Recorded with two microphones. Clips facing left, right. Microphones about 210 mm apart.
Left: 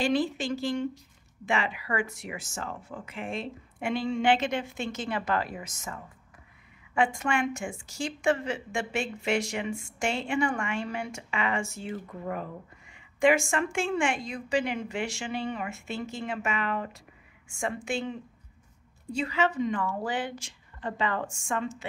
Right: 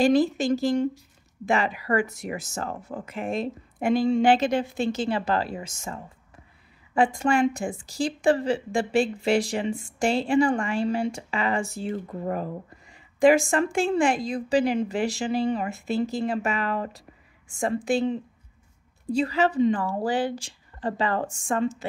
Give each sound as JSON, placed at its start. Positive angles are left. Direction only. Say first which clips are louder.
{"t": 0.0, "sound": "a woman's voice", "louder": "right 7 dB", "side_deg": -40}